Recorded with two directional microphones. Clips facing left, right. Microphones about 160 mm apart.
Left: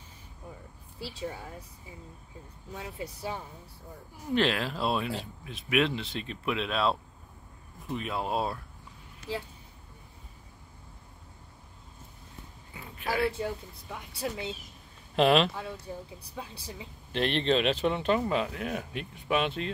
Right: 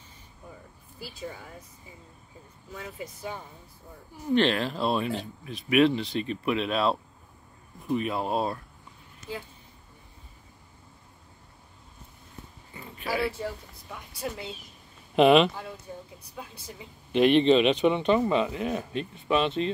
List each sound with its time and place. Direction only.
2.7 s speech: 30° left (ahead or behind)
4.3 s speech: centre (ahead or behind)
12.7 s a sound: centre (ahead or behind)
15.1 s speech: centre (ahead or behind)
16.2 s speech: 30° left (ahead or behind)
17.1 s speech: 5° right (ahead or behind)